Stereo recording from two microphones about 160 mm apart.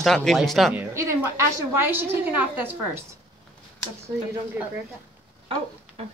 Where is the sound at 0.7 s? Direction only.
15° right (ahead or behind).